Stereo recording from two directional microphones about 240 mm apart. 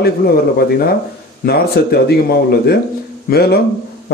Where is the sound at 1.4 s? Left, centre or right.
Left.